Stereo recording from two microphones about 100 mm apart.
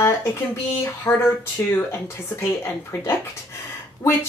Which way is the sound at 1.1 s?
25° left (ahead or behind).